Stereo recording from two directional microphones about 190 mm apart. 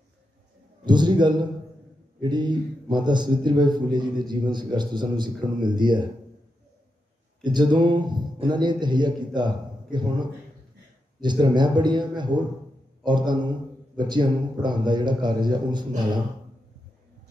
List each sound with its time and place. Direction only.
0.8 s a man's voice: 25° right (ahead or behind)
7.4 s a man's voice: 25° right (ahead or behind)